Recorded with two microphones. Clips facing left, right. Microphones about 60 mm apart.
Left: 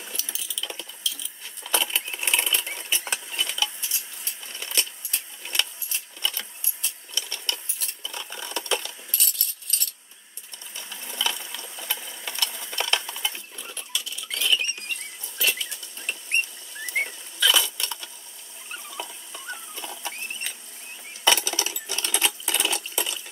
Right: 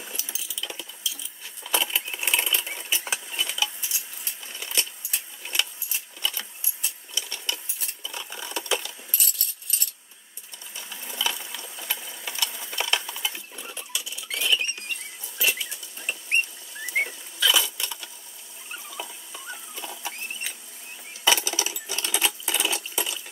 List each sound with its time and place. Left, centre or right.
0.1 s a sound: centre
1.0 s keys jangling: centre
2.2 s sewing machine: centre
10.8 s sewing machine: centre
15.3 s patter: centre
16.8 s rodents: centre
18.7 s rodents: centre
19.7 s a sound: centre
21.2 s coin: centre